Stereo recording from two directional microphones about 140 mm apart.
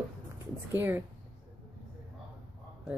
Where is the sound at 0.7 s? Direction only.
15° right (ahead or behind).